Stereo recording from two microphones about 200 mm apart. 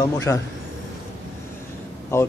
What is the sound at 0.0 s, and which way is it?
Speech, 15° left (ahead or behind).